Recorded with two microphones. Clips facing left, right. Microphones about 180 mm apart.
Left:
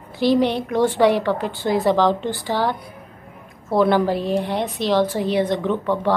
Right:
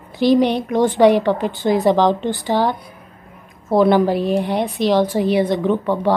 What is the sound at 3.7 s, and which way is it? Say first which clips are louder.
A woman's voice: right 3 dB; 15° right (ahead or behind).